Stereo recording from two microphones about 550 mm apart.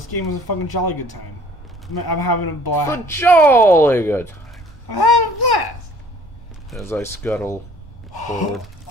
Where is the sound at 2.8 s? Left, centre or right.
Centre.